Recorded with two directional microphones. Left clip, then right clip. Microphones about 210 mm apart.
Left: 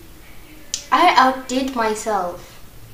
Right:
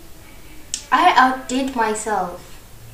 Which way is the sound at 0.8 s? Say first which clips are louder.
Even; centre (ahead or behind).